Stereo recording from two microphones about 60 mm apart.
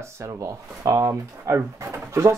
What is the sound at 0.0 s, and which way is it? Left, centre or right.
Speech, right.